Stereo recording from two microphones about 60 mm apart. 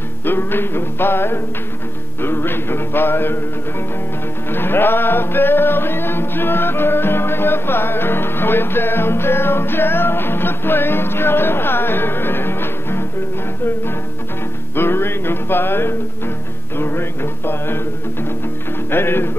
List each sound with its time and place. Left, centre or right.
0.2 s music: left
4.5 s music: left
14.8 s music: left
16.7 s mantra: left
18.9 s music: left